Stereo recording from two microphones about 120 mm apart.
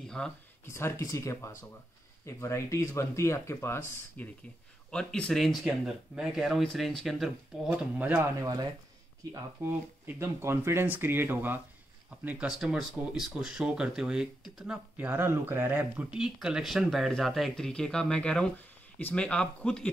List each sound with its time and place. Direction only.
0.0 s a sound: 5° left (ahead or behind)
0.7 s speech: 20° left (ahead or behind)
4.9 s speech: 10° left (ahead or behind)
8.0 s speech: 15° right (ahead or behind)
8.4 s speech: 30° right (ahead or behind); by 19.9 s 5° left (ahead or behind)